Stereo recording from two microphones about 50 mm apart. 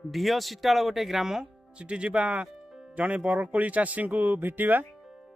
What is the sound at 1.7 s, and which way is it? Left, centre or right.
Speech, right.